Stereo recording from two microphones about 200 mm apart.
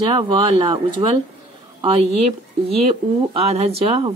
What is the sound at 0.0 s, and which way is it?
Speech, 20° right (ahead or behind).